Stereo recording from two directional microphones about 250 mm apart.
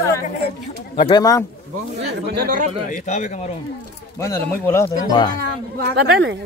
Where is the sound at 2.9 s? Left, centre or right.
Left.